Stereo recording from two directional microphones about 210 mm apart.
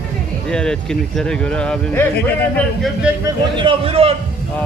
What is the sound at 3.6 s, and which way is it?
Speech, 25° right (ahead or behind).